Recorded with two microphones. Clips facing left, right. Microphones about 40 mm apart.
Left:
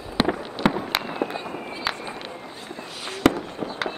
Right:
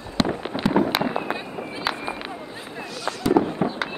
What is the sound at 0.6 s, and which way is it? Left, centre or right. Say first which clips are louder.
Fireworks: right 1 dB; left.